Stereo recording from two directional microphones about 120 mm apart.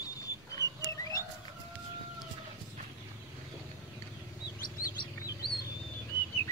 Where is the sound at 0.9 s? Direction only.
25° left (ahead or behind).